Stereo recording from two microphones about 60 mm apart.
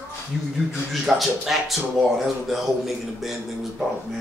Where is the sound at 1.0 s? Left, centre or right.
Centre.